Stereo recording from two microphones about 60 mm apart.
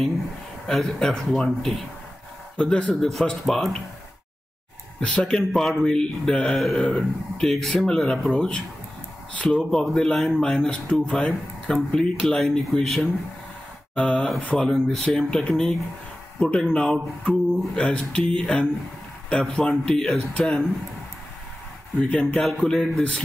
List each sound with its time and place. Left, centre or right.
0.7 s speech: centre
5.0 s speech: centre
19.7 s speech: centre
22.2 s speech: centre